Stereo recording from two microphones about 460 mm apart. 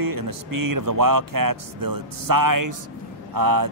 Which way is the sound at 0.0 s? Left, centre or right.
Right.